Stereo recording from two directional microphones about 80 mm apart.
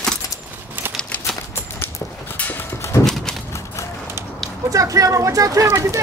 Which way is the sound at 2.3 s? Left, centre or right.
Centre.